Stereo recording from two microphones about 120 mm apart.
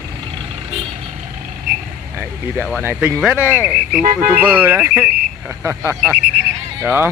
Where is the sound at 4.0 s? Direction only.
90° right.